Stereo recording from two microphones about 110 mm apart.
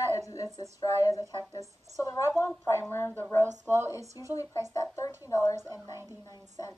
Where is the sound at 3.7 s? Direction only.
25° right (ahead or behind).